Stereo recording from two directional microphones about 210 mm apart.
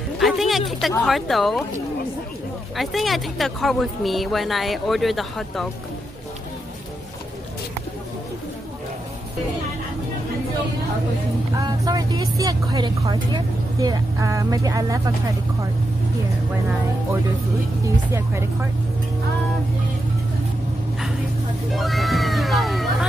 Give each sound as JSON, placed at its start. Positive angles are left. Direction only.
{"t": 0.2, "sound": "a sound", "side_deg": 0}
{"t": 0.9, "sound": "speech", "side_deg": 0}
{"t": 2.7, "sound": "speech", "side_deg": 0}
{"t": 11.5, "sound": "speech", "side_deg": -15}
{"t": 17.8, "sound": "speech", "side_deg": -10}
{"t": 21.7, "sound": "music", "side_deg": 0}